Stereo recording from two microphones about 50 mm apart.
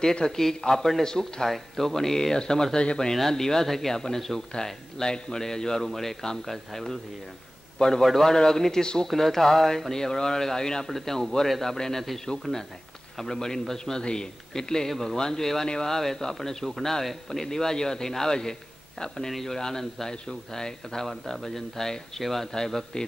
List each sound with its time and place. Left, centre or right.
0.0 s a man's voice: centre
13.2 s a man's voice: centre